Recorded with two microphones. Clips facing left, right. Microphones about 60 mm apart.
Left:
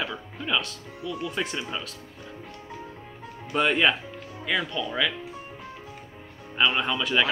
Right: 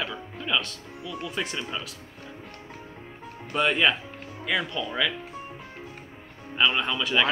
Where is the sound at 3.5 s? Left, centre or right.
Centre.